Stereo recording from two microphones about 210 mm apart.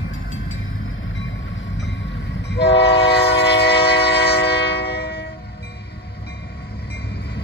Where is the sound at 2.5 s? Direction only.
55° left (ahead or behind).